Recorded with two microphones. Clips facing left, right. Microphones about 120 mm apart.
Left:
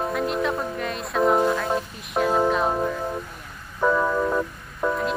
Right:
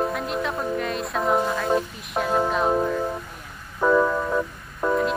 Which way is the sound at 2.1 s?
Centre (ahead or behind).